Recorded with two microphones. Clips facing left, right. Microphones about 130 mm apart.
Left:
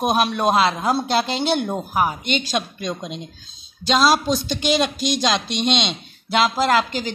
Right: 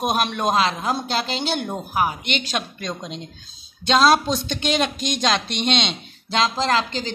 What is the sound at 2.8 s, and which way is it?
A woman's voice, 10° left (ahead or behind).